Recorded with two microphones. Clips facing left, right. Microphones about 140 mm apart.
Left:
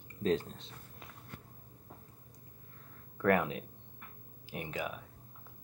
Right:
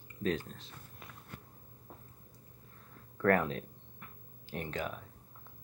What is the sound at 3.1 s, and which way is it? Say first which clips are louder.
Speech: even; 15° left (ahead or behind).